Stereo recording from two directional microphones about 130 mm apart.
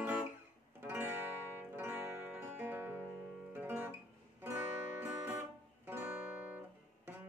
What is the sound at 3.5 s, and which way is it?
Guitar, 15° right (ahead or behind).